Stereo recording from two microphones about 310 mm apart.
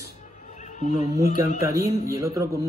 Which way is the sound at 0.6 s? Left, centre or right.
Left.